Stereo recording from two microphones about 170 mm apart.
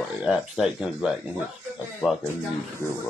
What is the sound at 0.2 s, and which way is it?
Speech, 5° right (ahead or behind).